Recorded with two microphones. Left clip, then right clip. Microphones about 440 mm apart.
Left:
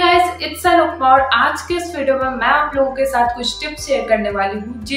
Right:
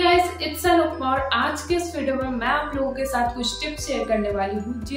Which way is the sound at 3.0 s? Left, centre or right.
Right.